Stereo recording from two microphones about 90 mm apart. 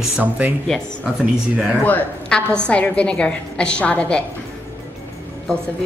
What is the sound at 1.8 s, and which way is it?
A woman's voice, 15° left (ahead or behind).